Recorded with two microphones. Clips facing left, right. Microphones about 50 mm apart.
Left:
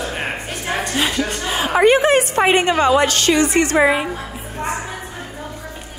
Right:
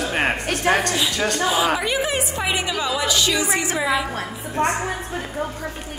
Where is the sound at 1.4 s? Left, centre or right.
Left.